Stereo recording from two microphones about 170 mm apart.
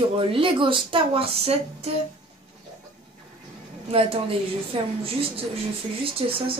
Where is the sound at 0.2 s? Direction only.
30° right (ahead or behind).